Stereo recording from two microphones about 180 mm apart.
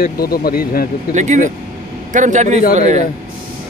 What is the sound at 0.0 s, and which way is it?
Speech, 55° left (ahead or behind).